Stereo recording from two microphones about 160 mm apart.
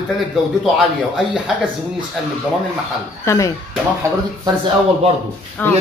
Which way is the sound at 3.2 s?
20° left (ahead or behind).